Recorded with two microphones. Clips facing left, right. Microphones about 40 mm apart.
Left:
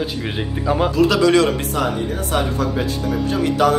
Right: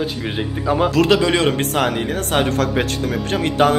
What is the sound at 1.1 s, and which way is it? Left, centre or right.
Speech, right.